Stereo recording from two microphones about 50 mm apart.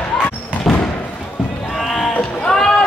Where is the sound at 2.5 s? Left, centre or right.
Centre.